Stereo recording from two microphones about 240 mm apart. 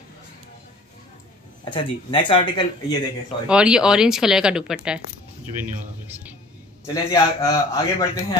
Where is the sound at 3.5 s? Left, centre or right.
Centre.